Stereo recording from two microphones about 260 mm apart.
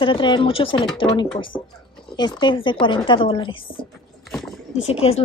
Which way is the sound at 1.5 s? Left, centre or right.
Centre.